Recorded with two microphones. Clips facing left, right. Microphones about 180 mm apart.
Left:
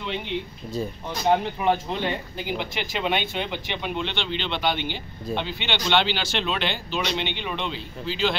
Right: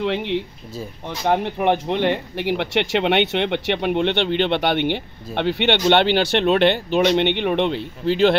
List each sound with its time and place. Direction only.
0.0 s speech: 80° right
1.4 s speech: 65° right (ahead or behind)